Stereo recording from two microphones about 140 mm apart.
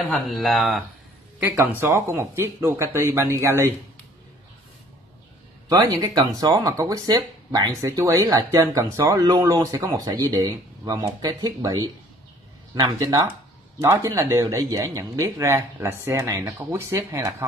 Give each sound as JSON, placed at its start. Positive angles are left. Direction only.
{"t": 0.0, "sound": "speech", "side_deg": 0}
{"t": 1.6, "sound": "speech", "side_deg": -15}
{"t": 5.7, "sound": "speech", "side_deg": -25}
{"t": 13.0, "sound": "speech", "side_deg": -30}